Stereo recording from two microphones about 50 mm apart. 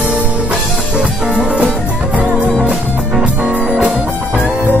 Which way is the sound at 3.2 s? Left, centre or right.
Right.